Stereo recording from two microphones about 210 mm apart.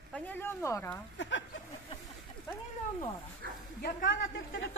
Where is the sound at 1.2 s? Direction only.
60° left (ahead or behind).